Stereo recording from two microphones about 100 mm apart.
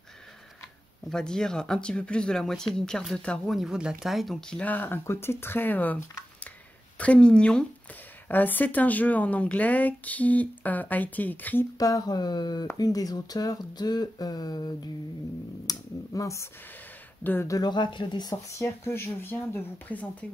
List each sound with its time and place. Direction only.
1.0 s speech: 5° left (ahead or behind)
3.5 s speech: 5° right (ahead or behind); by 6.2 s 20° left (ahead or behind)
7.0 s speech: 10° left (ahead or behind)
11.8 s speech: 40° left (ahead or behind)
17.2 s speech: 20° left (ahead or behind)
17.5 s speech: 45° left (ahead or behind)
18.6 s speech: 25° left (ahead or behind)